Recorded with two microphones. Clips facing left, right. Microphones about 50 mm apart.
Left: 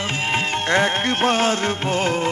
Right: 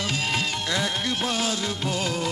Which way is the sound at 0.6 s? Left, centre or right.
Left.